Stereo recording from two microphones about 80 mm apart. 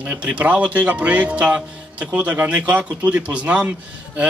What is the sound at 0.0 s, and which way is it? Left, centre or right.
A man's voice, centre.